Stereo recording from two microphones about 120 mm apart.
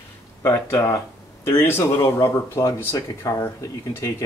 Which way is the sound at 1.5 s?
20° left (ahead or behind).